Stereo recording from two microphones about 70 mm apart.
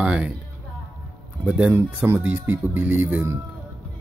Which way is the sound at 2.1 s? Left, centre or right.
Right.